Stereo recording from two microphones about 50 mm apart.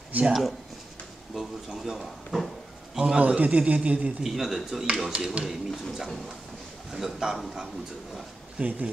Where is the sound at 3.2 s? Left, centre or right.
Right.